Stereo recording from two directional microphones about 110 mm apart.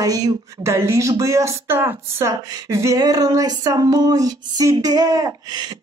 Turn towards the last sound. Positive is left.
turn(degrees=-40)  # may be behind; listen again after turning